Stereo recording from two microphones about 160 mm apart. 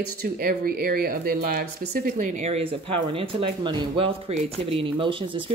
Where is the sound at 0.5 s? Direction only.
70° right (ahead or behind).